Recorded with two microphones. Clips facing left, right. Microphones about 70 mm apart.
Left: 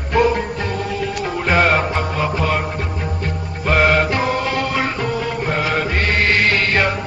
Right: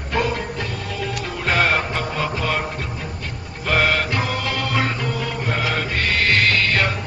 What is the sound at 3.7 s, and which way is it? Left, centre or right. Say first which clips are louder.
Music: left 4 dB; left.